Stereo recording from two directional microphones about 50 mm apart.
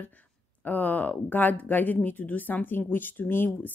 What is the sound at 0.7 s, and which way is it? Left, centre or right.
Speech, left.